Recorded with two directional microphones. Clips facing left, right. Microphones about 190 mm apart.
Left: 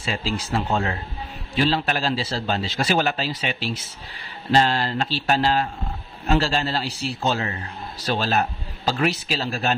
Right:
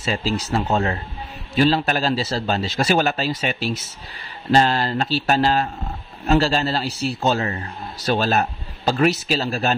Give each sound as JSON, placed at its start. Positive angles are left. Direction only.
{"t": 0.0, "sound": "a man's voice", "side_deg": -40}